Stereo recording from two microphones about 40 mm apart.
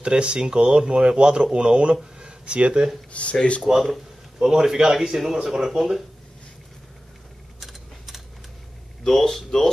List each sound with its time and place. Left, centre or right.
0.0 s speech: right
2.1 s a sound: right
2.7 s speech: centre
3.1 s speech: left
3.6 s speech: centre
4.4 s speech: centre
9.0 s speech: centre